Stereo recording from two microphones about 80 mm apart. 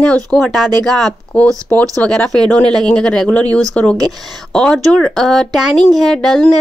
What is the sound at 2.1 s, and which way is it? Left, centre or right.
Speech, centre.